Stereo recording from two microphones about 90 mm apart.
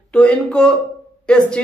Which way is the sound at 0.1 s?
15° left (ahead or behind).